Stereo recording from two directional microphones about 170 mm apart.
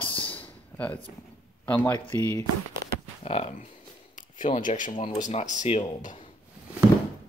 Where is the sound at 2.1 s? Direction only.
25° right (ahead or behind).